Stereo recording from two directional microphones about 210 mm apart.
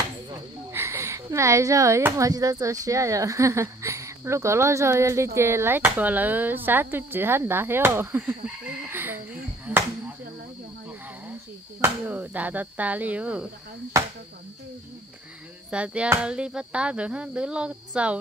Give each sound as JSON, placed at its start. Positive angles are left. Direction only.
{"t": 0.3, "sound": "speech", "side_deg": -10}
{"t": 8.9, "sound": "chicken", "side_deg": -10}
{"t": 9.7, "sound": "chop", "side_deg": -10}
{"t": 11.8, "sound": "speech", "side_deg": -5}
{"t": 15.7, "sound": "speech", "side_deg": -5}